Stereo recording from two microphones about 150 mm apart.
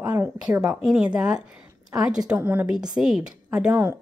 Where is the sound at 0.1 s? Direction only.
15° right (ahead or behind).